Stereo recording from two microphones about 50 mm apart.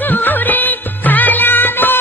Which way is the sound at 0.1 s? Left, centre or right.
Left.